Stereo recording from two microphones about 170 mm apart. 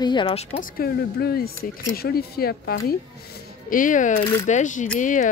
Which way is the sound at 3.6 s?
50° left (ahead or behind).